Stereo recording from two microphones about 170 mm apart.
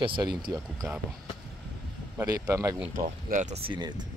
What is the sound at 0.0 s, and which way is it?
Speech, 30° right (ahead or behind).